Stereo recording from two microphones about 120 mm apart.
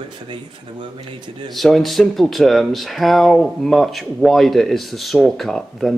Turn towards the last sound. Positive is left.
turn(degrees=0)  # may be behind; listen again after turning